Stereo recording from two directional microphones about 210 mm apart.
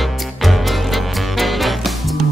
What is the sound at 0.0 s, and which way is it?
Music, centre (ahead or behind).